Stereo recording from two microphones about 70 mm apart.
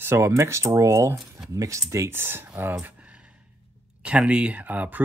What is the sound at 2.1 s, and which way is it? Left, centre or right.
Speech, right.